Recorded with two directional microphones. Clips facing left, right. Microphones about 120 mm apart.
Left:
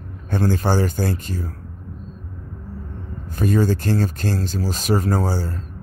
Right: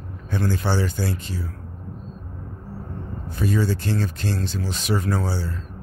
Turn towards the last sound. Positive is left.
turn(degrees=45)  # may be behind; listen again after turning